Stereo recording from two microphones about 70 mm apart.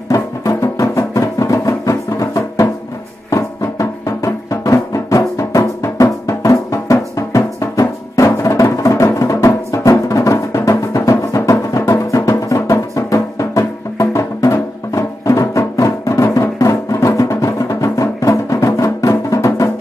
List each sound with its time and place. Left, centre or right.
0.1 s music: left